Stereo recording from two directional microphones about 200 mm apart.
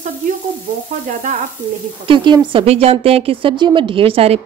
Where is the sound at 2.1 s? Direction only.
25° right (ahead or behind).